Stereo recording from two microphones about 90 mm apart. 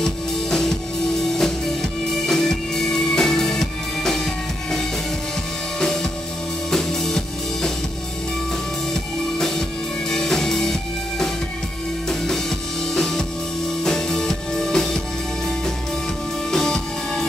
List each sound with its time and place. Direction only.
0.0 s music: 5° left (ahead or behind)
6.7 s drum: 5° left (ahead or behind)
9.4 s music: 5° left (ahead or behind)
16.4 s music: 5° left (ahead or behind)